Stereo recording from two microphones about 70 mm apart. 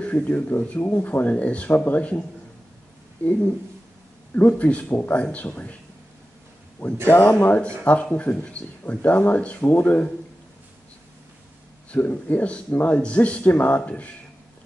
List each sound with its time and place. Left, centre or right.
0.0 s speech: left
4.4 s speech: left
7.1 s speech: left
11.9 s speech: left